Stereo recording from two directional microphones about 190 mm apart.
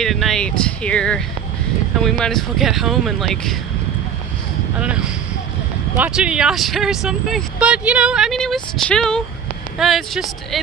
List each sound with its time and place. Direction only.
0.0 s speech: centre (ahead or behind)
4.7 s speech: 5° right (ahead or behind)